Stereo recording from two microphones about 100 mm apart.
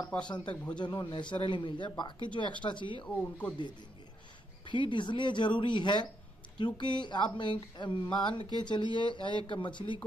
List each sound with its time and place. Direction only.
0.1 s speech: 10° left (ahead or behind)
0.7 s speech: 50° left (ahead or behind)
3.1 s speech: 15° left (ahead or behind)
4.6 s speech: 50° left (ahead or behind)